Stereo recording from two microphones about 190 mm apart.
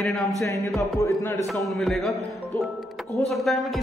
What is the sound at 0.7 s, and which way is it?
Speech, 15° left (ahead or behind).